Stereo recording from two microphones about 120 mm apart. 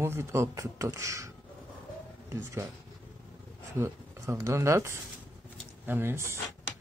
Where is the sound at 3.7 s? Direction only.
20° right (ahead or behind).